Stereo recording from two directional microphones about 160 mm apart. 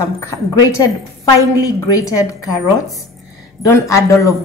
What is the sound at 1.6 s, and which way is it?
Speech, 20° left (ahead or behind).